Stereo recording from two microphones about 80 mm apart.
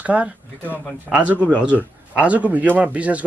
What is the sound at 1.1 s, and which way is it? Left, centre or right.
Speech, centre.